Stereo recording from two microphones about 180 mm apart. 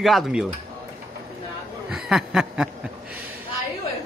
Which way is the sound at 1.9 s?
5° right (ahead or behind).